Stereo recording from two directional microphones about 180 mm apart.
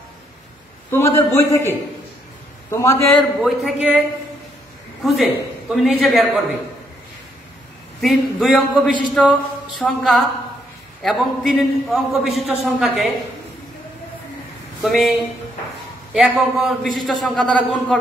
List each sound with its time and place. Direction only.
0.9 s a man's voice: 15° left (ahead or behind)
3.3 s a man's voice: centre (ahead or behind)
5.0 s a man's voice: centre (ahead or behind)
8.0 s a man's voice: centre (ahead or behind)
14.8 s a man's voice: centre (ahead or behind)